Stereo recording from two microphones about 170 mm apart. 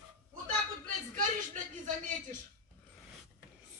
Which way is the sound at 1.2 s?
45° right (ahead or behind).